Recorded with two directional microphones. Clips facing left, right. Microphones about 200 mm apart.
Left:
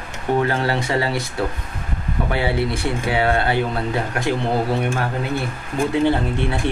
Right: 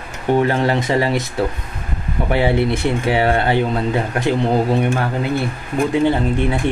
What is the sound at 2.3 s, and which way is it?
Speech, 20° right (ahead or behind).